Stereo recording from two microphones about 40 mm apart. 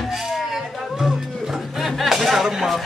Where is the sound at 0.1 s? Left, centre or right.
Centre.